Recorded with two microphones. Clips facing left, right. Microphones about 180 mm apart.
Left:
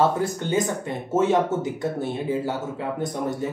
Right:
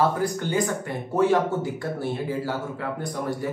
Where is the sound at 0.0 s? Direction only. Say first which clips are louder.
Left 1 dB; 25° left (ahead or behind).